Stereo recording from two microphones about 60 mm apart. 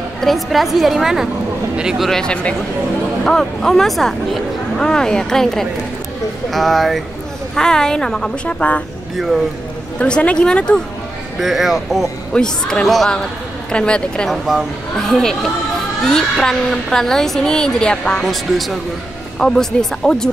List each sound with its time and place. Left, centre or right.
0.2 s speech: centre
2.0 s speech: centre
8.5 s speech: left
9.1 s speech: centre
9.9 s speech: centre
11.3 s speech: centre
12.4 s speech: centre
12.8 s speech: centre
13.7 s speech: centre
14.3 s speech: centre
18.2 s speech: centre